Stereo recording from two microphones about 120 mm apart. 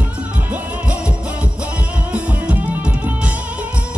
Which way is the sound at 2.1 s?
10° right (ahead or behind).